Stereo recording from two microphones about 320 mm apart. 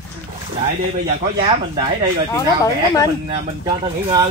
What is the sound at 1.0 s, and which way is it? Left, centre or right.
Speech, centre.